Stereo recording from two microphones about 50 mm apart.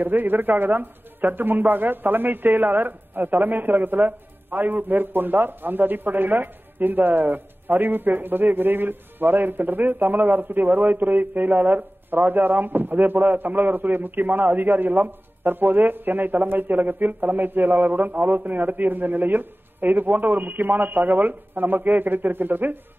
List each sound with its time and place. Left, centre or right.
0.0 s speech: right